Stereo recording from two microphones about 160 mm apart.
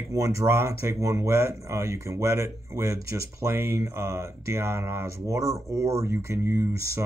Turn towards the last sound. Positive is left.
turn(degrees=-15)  # may be behind; listen again after turning